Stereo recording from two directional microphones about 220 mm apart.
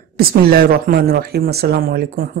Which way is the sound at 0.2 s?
45° right (ahead or behind).